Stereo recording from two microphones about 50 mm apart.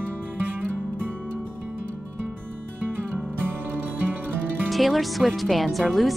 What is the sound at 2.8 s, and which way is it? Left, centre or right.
Music, right.